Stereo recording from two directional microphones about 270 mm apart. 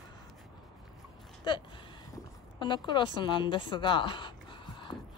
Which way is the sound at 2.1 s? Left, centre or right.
Centre.